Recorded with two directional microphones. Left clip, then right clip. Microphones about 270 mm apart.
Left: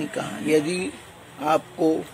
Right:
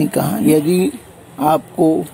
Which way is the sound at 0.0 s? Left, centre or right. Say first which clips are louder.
Right 12 dB; right.